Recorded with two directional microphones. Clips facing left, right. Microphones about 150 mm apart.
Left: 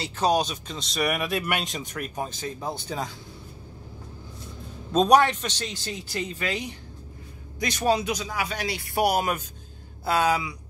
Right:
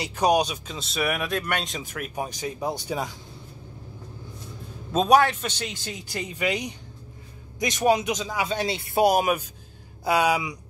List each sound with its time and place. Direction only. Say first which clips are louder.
0.0 s speech: right 2 dB; 15° right (ahead or behind)
4.9 s speech: even; centre (ahead or behind)